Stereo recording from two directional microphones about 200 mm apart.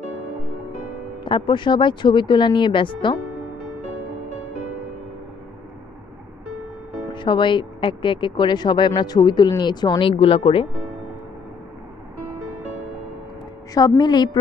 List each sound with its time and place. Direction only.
1.2 s speech: 25° left (ahead or behind)
7.2 s speech: 25° left (ahead or behind)
13.7 s speech: 20° left (ahead or behind)